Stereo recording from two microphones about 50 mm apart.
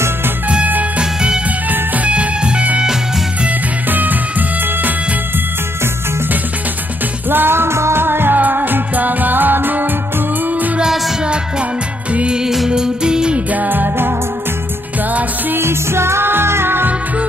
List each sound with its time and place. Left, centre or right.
0.9 s music: centre
3.4 s music: right
7.2 s music: right
10.8 s music: centre
12.4 s music: centre
13.5 s music: right
15.5 s music: right